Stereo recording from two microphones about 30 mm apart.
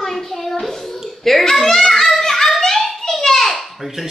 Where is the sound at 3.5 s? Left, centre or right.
Centre.